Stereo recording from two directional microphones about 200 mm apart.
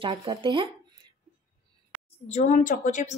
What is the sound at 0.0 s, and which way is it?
Speech, 25° right (ahead or behind).